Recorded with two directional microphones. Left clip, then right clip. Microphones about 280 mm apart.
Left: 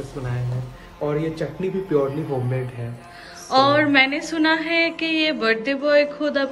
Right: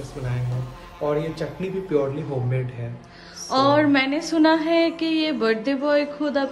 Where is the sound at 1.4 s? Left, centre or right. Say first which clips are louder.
Left 2 dB; left.